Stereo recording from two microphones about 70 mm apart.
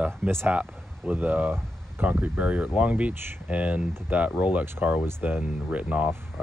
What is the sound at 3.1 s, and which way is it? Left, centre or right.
Speech, right.